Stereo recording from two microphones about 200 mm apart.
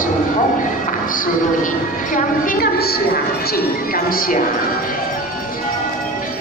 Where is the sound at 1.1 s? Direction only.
40° left (ahead or behind).